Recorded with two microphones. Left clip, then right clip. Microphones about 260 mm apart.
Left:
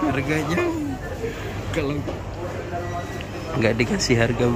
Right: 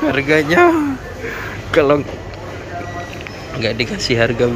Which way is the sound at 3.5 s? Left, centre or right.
Centre.